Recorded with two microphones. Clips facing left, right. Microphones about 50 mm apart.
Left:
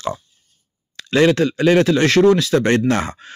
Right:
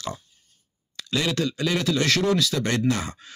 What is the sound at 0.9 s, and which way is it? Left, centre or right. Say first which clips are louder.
Speech: left 11 dB; left.